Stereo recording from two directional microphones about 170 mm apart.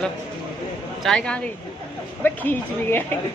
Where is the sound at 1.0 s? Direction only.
5° left (ahead or behind).